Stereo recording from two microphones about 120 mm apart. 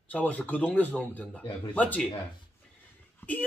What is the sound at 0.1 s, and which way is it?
A man's voice, 10° left (ahead or behind).